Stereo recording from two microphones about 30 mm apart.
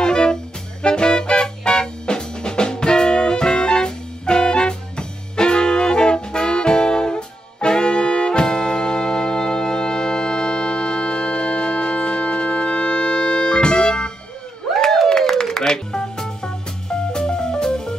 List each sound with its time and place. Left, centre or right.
0.0 s music: left
15.0 s music: left